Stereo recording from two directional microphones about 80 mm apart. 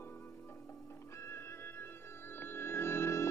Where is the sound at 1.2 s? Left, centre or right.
Left.